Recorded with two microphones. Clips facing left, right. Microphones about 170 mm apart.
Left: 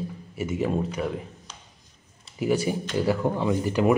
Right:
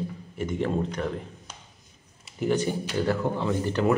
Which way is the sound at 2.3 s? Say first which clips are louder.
Left 1 dB; 10° left (ahead or behind).